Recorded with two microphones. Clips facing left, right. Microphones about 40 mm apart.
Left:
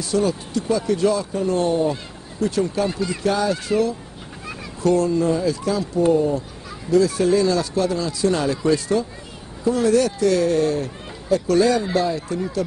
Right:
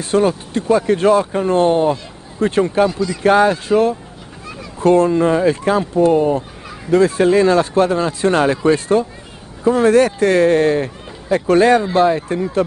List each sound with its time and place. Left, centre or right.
0.0 s speech: right
2.9 s speech: left
3.2 s speech: right